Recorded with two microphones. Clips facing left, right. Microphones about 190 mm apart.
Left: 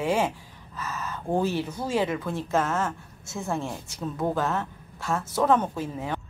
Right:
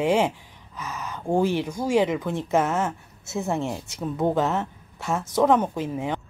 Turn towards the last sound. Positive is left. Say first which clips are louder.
# right 3 dB
turn(degrees=-15)  # may be behind; listen again after turning